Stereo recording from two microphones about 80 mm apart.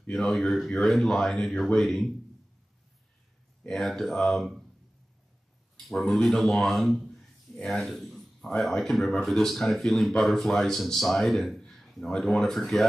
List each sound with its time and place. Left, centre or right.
0.1 s speech: centre
3.6 s speech: centre
5.8 s a man's voice: centre